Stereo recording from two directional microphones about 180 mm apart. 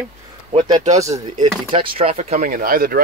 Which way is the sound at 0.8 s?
40° right (ahead or behind).